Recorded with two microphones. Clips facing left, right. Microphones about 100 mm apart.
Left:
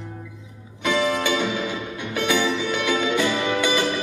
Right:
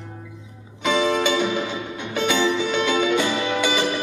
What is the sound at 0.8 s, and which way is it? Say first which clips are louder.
Music: right 2 dB; 20° right (ahead or behind).